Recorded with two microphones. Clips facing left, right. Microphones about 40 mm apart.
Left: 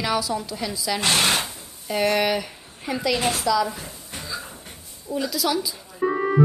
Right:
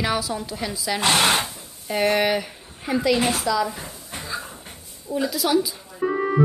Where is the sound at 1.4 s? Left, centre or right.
Centre.